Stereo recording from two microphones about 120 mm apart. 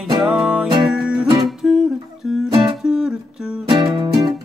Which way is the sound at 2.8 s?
5° right (ahead or behind).